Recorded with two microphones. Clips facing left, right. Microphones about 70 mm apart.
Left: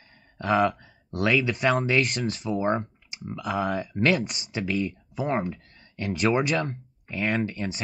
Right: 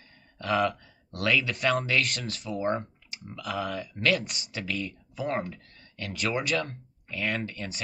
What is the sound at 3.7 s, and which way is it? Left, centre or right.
Speech, left.